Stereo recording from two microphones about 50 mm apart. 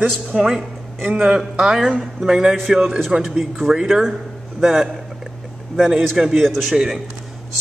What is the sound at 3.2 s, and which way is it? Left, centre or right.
Speech, centre.